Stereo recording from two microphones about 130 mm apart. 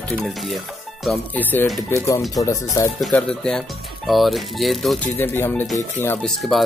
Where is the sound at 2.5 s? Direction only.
20° left (ahead or behind).